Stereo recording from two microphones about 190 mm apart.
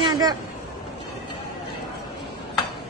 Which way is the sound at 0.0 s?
20° right (ahead or behind).